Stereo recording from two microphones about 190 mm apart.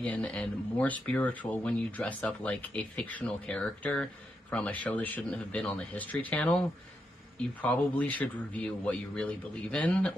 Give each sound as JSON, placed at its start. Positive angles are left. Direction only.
{"t": 0.0, "sound": "speech", "side_deg": 5}
{"t": 7.6, "sound": "a man's voice", "side_deg": 10}